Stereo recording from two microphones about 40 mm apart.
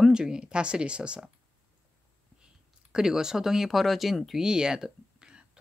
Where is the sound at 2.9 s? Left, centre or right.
Centre.